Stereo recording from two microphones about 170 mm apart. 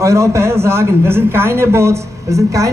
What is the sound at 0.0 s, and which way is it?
A man's voice, 15° right (ahead or behind).